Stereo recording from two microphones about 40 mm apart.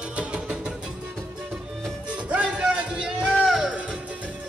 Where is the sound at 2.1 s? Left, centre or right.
Right.